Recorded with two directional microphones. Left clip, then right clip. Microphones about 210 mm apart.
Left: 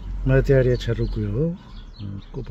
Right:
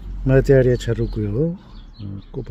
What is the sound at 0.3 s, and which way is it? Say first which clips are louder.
Speech: right 4 dB; 40° right (ahead or behind).